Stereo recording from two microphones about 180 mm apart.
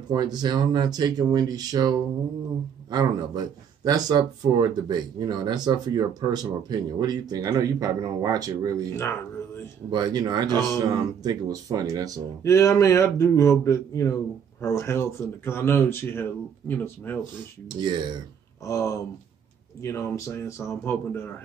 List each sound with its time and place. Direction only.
0.1 s speech: 20° right (ahead or behind)
9.8 s speech: 25° right (ahead or behind)
12.4 s speech: 15° left (ahead or behind)
17.7 s speech: 25° right (ahead or behind)
18.7 s speech: 15° left (ahead or behind)